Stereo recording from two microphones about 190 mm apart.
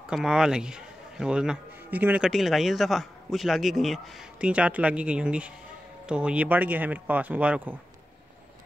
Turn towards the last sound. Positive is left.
turn(degrees=-10)  # may be behind; listen again after turning